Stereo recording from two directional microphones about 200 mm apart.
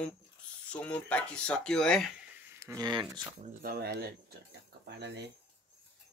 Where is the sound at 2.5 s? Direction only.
15° right (ahead or behind).